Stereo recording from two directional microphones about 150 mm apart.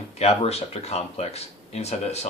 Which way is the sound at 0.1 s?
45° left (ahead or behind).